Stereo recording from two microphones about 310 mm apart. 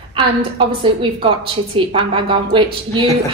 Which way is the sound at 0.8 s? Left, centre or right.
Centre.